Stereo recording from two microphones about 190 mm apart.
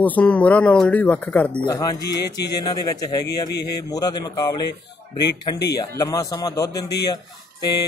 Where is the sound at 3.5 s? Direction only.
60° left (ahead or behind).